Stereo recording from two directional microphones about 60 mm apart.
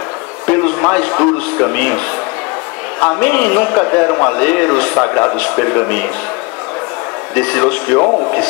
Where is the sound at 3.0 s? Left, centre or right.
Left.